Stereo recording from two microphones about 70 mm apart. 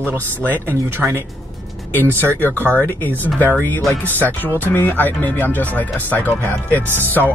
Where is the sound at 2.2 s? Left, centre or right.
Left.